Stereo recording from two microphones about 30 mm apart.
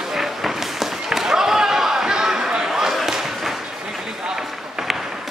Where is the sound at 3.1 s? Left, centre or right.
Centre.